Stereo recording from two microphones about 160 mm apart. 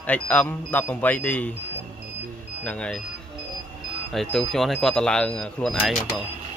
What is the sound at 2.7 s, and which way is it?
Speech, 5° left (ahead or behind).